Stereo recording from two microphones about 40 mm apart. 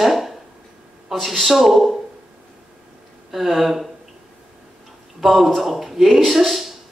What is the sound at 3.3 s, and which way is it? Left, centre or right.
Speech, centre.